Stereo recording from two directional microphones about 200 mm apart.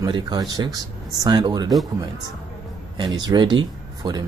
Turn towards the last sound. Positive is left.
turn(degrees=-20)  # may be behind; listen again after turning